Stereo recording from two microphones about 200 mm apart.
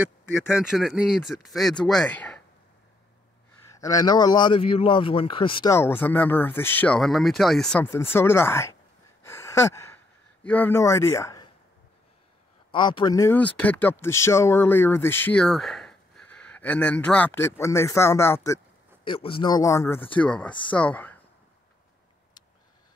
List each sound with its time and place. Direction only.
0.0 s speech: 5° right (ahead or behind)
3.8 s speech: 20° left (ahead or behind)
5.8 s speech: 10° left (ahead or behind)
9.2 s gasp: 15° left (ahead or behind)
10.4 s speech: 10° left (ahead or behind)
12.7 s speech: 25° left (ahead or behind)
19.0 s speech: 25° left (ahead or behind); by 21.2 s 10° left (ahead or behind)